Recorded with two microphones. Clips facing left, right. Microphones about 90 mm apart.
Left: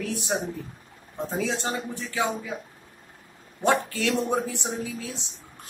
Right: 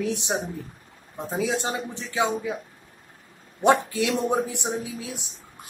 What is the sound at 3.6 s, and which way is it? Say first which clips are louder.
Speech: right 4 dB; 15° right (ahead or behind).